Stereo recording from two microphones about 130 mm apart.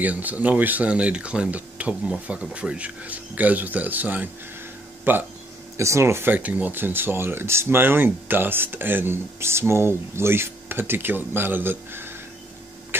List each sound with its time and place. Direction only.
0.0 s speech: 10° right (ahead or behind)